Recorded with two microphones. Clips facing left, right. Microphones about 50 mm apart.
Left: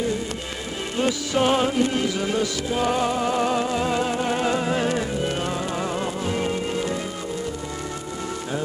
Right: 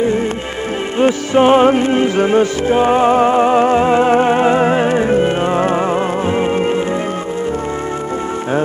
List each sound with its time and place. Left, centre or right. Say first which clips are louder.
0.9 s music: right 10 dB; right